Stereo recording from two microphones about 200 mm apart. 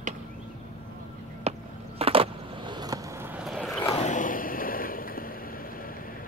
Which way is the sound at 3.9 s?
40° left (ahead or behind).